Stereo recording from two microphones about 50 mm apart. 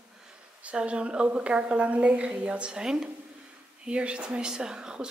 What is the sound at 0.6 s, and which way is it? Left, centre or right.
A woman's voice, right.